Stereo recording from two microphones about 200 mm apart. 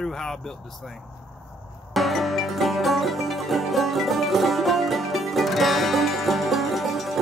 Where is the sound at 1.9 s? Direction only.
Centre (ahead or behind).